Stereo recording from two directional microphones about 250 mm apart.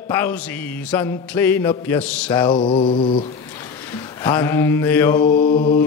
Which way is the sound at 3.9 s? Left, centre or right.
Centre.